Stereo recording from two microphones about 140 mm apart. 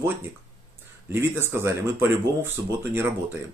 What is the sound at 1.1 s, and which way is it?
A man's voice, 15° right (ahead or behind).